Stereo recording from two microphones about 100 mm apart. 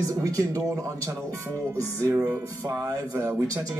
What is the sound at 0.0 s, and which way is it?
Speech, 35° right (ahead or behind).